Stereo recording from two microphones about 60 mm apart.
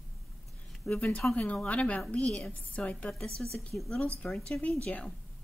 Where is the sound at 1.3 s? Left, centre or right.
Left.